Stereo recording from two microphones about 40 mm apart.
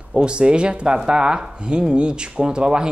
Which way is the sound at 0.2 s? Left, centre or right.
Right.